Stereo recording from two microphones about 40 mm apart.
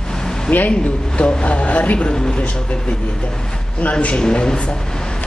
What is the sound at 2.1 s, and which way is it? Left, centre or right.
Speech, centre.